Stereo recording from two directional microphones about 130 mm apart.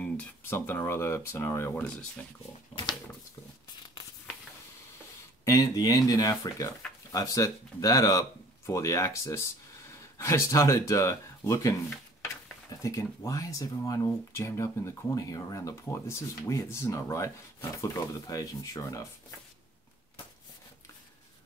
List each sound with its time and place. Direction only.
0.0 s speech: 15° left (ahead or behind)
1.9 s speech: 10° left (ahead or behind)
5.4 s speech: 25° left (ahead or behind)
12.8 s speech: 25° left (ahead or behind)